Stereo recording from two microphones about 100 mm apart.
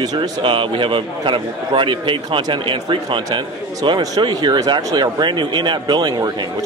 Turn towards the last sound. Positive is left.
turn(degrees=-45)  # may be behind; listen again after turning